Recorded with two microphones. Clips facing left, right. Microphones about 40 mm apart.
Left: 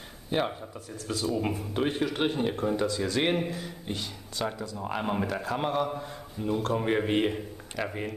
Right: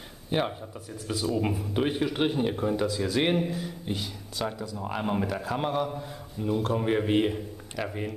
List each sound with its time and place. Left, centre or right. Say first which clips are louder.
0.3 s speech: right 1 dB; centre
1.0 s speech: right 1 dB; centre